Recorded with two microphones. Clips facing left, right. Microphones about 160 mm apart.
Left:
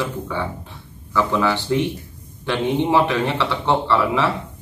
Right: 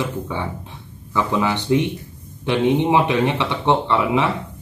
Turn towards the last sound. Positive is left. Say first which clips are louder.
# even
turn(degrees=-20)  # may be behind; listen again after turning